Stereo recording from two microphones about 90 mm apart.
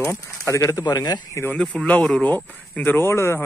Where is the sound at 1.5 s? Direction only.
15° left (ahead or behind).